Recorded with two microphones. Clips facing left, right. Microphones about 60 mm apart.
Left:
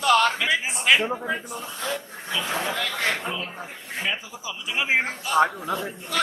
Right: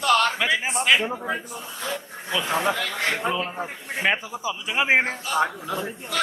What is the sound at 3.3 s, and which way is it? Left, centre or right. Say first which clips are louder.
A man's voice: right 5 dB; right.